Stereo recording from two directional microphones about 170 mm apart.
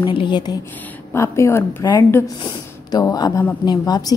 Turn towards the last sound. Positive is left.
turn(degrees=25)  # may be behind; listen again after turning